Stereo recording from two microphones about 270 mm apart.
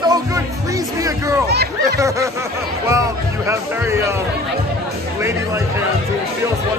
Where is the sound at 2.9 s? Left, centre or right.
Centre.